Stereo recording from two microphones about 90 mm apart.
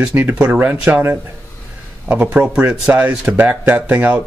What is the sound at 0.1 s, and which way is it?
Speech, 25° right (ahead or behind).